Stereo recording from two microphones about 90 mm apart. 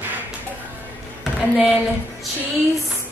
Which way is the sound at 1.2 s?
Centre (ahead or behind).